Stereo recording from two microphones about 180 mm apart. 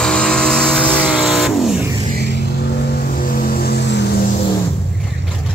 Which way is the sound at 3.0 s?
55° left (ahead or behind).